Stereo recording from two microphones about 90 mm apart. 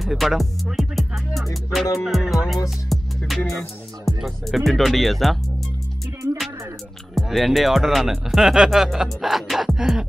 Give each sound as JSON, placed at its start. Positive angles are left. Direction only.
{"t": 0.0, "sound": "music", "side_deg": 0}
{"t": 2.2, "sound": "speech", "side_deg": -5}
{"t": 2.9, "sound": "music", "side_deg": 0}
{"t": 4.0, "sound": "speech", "side_deg": 0}
{"t": 7.2, "sound": "speech", "side_deg": 0}